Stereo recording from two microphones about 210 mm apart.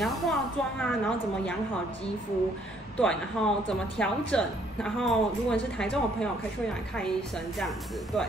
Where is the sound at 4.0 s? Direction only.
5° left (ahead or behind).